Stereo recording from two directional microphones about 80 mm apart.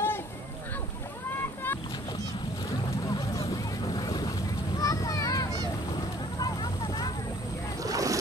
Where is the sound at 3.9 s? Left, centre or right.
Left.